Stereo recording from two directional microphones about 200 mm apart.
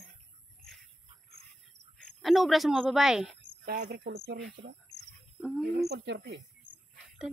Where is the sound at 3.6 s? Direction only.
50° right (ahead or behind).